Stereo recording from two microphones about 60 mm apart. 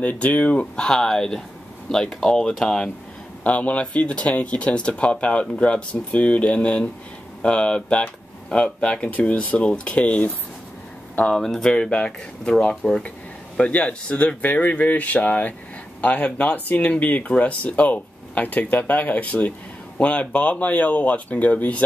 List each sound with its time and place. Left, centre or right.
0.0 s speech: left; by 2.9 s centre
3.4 s speech: left
11.4 s speech: centre
11.7 s speech: centre
13.6 s speech: left